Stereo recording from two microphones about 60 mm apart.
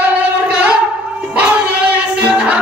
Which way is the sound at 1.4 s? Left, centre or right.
Right.